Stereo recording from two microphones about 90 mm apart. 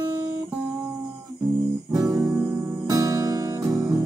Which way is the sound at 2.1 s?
45° right (ahead or behind).